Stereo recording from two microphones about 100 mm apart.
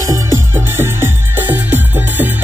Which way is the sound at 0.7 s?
25° right (ahead or behind).